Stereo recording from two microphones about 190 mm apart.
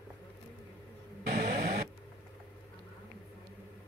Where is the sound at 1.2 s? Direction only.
55° right (ahead or behind).